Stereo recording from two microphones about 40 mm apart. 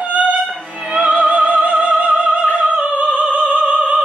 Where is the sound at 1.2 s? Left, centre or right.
Right.